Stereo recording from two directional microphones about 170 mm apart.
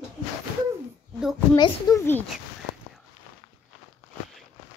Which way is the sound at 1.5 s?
25° left (ahead or behind).